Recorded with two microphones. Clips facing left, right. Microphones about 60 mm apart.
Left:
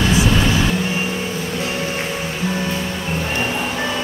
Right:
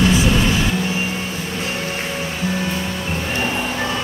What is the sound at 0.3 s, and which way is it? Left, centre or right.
Music, left.